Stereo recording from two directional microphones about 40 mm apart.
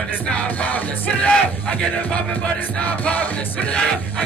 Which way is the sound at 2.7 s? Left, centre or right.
Left.